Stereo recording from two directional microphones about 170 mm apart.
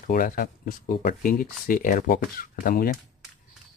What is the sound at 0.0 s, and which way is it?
Speech, 60° left (ahead or behind).